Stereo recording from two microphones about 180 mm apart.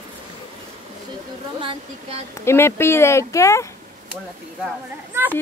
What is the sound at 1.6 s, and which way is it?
Speech, 30° right (ahead or behind).